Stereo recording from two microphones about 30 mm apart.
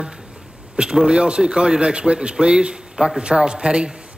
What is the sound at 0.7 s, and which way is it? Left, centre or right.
A man's voice, right.